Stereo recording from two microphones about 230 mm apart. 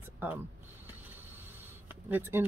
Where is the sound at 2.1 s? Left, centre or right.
Centre.